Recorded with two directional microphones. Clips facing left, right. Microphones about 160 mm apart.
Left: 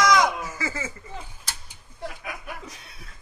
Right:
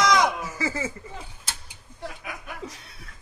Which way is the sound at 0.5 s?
30° right (ahead or behind).